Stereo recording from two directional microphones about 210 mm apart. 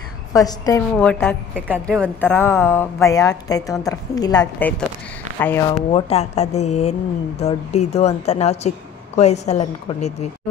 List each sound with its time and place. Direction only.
0.3 s a woman's voice: 15° left (ahead or behind)
0.9 s a woman's voice: 5° left (ahead or behind)
5.8 s a woman's voice: 30° left (ahead or behind)